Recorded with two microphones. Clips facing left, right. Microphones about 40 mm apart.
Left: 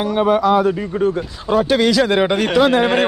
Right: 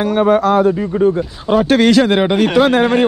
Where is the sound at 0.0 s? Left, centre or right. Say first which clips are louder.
Right 3 dB; right.